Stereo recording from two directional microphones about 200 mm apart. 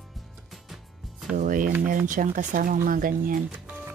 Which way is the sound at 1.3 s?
40° right (ahead or behind).